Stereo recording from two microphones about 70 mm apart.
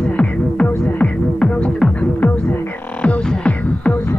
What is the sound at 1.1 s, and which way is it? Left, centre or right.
Music, centre.